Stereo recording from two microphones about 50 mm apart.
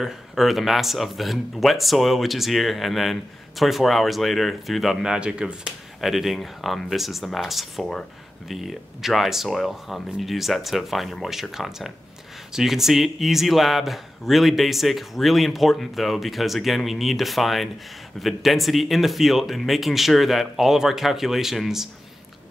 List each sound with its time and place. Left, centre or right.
0.0 s a man's voice: centre
5.0 s speech: centre
5.9 s a man's voice: centre